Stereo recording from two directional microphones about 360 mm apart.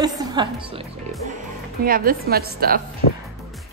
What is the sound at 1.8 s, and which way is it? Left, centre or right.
A woman's voice, right.